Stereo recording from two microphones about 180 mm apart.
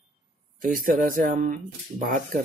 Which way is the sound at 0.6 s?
50° right (ahead or behind).